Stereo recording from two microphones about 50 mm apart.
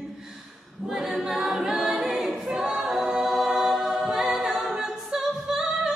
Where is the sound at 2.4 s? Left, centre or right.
Centre.